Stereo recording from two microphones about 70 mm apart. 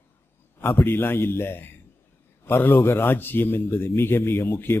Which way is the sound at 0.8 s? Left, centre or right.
Left.